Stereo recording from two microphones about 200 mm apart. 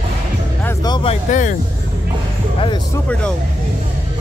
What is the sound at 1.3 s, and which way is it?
Music, 35° left (ahead or behind).